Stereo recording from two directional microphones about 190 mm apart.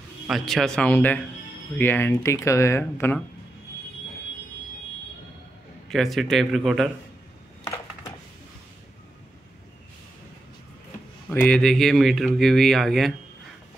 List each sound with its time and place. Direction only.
0.3 s speech: centre (ahead or behind)
5.9 s speech: centre (ahead or behind)
7.6 s a sound: 15° left (ahead or behind)
11.2 s speech: 5° left (ahead or behind)